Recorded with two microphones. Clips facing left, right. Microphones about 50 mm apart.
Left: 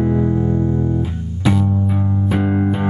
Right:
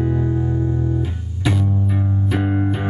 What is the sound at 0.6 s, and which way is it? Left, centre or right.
Music, centre.